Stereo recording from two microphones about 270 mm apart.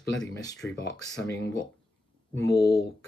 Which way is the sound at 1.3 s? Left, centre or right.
Left.